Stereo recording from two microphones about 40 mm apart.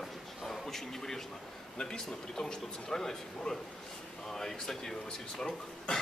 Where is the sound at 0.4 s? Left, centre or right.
Centre.